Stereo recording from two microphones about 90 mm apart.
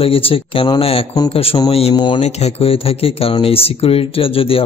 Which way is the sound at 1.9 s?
60° left (ahead or behind).